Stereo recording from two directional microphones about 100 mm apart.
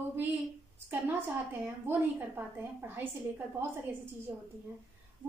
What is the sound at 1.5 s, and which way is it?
A woman's voice, 20° right (ahead or behind).